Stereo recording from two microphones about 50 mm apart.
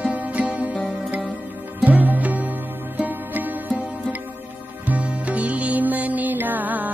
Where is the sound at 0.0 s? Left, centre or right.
Right.